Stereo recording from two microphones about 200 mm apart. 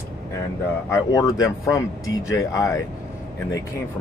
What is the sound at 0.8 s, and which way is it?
Speech, 15° left (ahead or behind).